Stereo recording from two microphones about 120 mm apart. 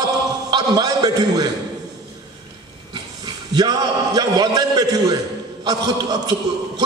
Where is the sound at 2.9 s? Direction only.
35° right (ahead or behind).